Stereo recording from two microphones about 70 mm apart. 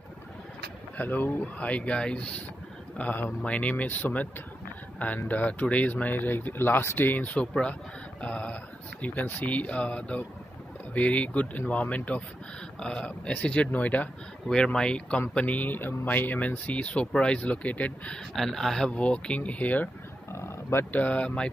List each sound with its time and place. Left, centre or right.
0.9 s speech: left
3.0 s speech: left
8.2 s mantra: centre
9.0 s speech: left
14.5 s speech: centre
18.3 s speech: centre
18.9 s speech: centre
20.3 s livestock: left
20.9 s speech: centre